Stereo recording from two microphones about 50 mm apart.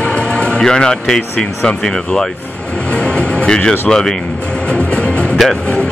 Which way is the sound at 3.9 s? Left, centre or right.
Centre.